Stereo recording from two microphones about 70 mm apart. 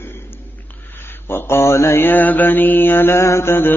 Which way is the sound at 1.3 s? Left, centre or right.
Left.